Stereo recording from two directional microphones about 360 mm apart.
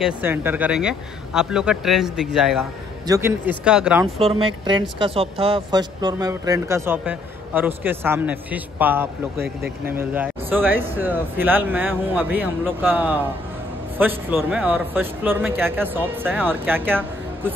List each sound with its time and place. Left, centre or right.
0.0 s speech: centre
4.2 s speech: centre
9.4 s speech: right
9.9 s speech: centre